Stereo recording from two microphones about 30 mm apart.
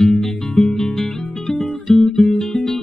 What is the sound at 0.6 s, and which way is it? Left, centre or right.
Guitar, centre.